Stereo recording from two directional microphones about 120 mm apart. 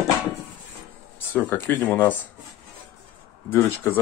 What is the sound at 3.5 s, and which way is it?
Speech, 15° left (ahead or behind).